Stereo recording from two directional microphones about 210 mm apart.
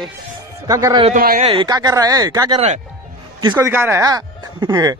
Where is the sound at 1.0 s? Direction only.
40° right (ahead or behind).